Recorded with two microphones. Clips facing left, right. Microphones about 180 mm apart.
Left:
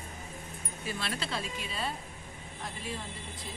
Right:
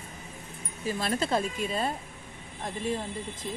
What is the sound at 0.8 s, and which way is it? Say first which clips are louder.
Speech: right 8 dB; 45° right (ahead or behind).